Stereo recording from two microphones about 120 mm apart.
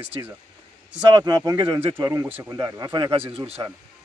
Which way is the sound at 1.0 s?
35° right (ahead or behind).